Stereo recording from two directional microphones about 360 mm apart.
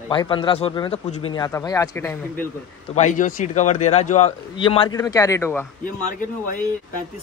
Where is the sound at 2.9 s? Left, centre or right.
Centre.